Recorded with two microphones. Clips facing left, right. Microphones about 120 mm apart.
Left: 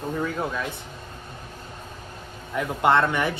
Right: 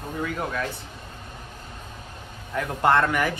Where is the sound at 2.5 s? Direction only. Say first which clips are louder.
Even; 15° left (ahead or behind).